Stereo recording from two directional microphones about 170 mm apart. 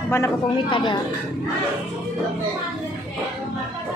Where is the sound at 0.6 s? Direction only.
30° left (ahead or behind).